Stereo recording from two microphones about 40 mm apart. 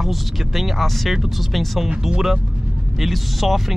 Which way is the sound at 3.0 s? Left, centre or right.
Centre.